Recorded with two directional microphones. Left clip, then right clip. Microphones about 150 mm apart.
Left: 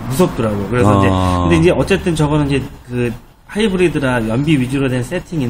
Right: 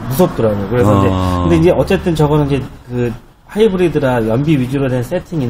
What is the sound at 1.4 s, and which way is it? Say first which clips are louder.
Speech: right 3 dB; 30° right (ahead or behind).